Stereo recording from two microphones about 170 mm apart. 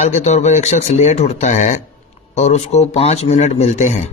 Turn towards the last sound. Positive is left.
turn(degrees=40)  # may be behind; listen again after turning